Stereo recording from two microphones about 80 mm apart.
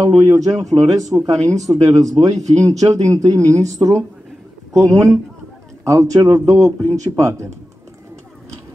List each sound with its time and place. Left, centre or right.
0.1 s speech: right
0.4 s speech: right